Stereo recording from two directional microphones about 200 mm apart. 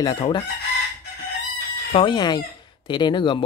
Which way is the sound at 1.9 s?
25° left (ahead or behind).